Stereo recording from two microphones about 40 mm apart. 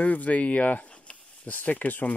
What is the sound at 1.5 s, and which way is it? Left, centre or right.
Speech, left.